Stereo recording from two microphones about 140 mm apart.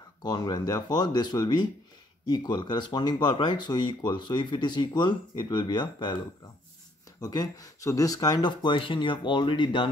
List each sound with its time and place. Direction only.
0.2 s speech: 30° left (ahead or behind)
7.2 s speech: 25° left (ahead or behind)